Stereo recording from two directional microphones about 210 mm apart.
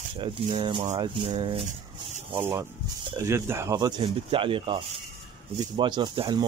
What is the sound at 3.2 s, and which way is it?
Speech, 10° right (ahead or behind).